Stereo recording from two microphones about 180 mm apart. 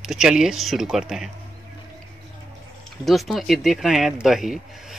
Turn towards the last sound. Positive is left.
turn(degrees=0)  # may be behind; listen again after turning